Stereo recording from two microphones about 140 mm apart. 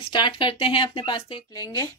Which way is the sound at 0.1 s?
35° left (ahead or behind).